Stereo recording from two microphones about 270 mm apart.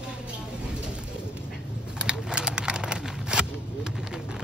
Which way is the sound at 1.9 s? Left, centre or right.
Centre.